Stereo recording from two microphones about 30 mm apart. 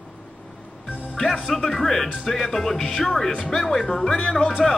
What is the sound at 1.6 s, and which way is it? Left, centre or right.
Speech, centre.